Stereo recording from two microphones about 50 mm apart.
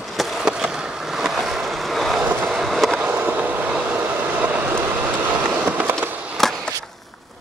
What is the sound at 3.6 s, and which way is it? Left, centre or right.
Vehicle, right.